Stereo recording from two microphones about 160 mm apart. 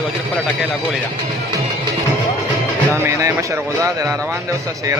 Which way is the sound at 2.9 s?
15° right (ahead or behind).